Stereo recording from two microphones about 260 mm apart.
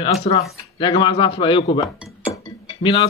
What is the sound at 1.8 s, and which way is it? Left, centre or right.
Chink, centre.